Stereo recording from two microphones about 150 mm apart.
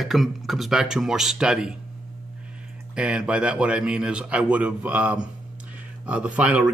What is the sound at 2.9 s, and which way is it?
Speech, 5° right (ahead or behind).